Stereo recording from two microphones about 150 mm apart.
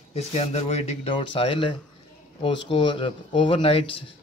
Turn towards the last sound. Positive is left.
turn(degrees=40)  # may be behind; listen again after turning